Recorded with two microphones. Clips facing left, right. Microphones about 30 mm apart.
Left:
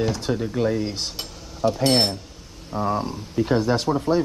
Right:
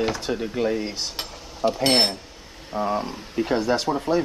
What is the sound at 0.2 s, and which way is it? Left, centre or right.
Speech, right.